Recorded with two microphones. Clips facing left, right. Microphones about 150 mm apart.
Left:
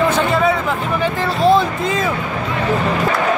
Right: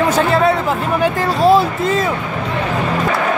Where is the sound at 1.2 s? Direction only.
40° right (ahead or behind).